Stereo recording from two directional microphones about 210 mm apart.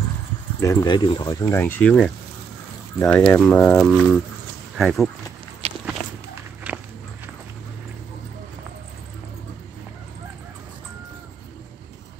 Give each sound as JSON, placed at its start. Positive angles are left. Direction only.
{"t": 0.6, "sound": "speech", "side_deg": 15}
{"t": 1.4, "sound": "speech", "side_deg": 10}
{"t": 6.7, "sound": "walk", "side_deg": -5}